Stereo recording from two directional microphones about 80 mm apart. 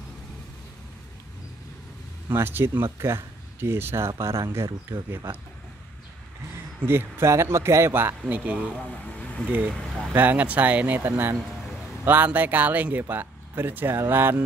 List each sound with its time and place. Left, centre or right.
2.3 s speech: right
6.9 s speech: right
8.3 s speech: centre